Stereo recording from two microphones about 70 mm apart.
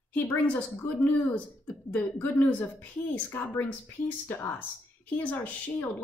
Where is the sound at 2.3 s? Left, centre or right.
Left.